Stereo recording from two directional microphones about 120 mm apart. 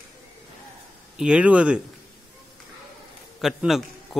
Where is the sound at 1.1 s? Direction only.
10° right (ahead or behind).